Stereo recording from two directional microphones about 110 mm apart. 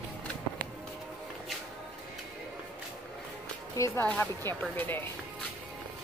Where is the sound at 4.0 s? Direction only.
20° left (ahead or behind).